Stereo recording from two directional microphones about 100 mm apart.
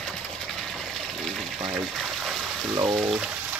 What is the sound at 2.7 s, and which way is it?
Pour, 45° right (ahead or behind).